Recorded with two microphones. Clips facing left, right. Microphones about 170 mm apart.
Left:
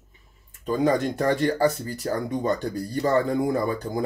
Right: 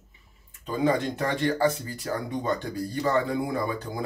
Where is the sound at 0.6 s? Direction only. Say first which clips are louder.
Left 3 dB; 40° left (ahead or behind).